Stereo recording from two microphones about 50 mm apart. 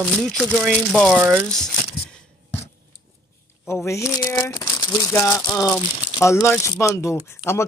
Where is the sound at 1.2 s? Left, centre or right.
Right.